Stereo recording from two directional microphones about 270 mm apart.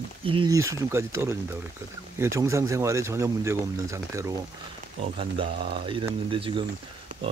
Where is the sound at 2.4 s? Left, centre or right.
Centre.